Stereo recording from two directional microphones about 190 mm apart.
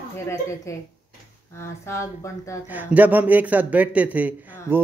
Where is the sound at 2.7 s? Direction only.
10° right (ahead or behind).